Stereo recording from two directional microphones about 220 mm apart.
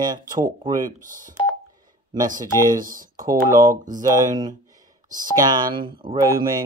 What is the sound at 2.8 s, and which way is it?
Speech, 40° right (ahead or behind).